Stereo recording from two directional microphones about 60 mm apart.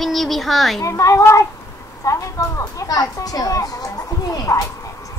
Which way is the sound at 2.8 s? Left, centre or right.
Left.